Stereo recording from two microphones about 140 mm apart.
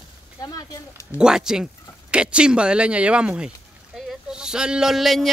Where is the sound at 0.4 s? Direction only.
25° left (ahead or behind).